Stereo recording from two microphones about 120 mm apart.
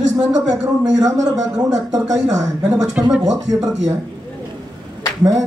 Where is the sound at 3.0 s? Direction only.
10° right (ahead or behind).